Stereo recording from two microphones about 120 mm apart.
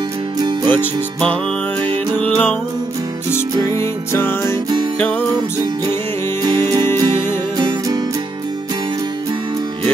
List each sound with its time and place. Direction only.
0.4 s music: 40° right (ahead or behind)
2.1 s music: 15° left (ahead or behind)
3.7 s music: 20° left (ahead or behind)
6.4 s music: 35° right (ahead or behind)